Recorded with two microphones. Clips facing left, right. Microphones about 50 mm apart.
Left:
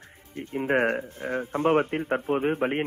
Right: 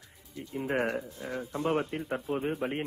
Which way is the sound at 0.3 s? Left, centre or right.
Left.